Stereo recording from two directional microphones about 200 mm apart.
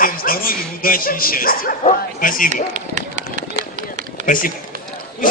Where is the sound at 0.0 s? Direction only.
45° left (ahead or behind).